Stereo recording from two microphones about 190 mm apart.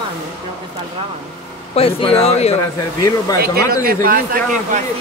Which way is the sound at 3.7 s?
50° right (ahead or behind).